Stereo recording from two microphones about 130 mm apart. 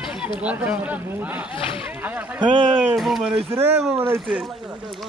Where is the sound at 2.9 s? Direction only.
Centre (ahead or behind).